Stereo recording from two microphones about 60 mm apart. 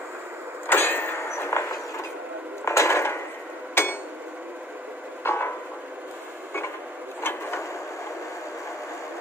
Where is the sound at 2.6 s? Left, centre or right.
Left.